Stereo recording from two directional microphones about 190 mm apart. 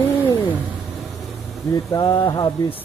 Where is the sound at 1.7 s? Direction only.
20° left (ahead or behind).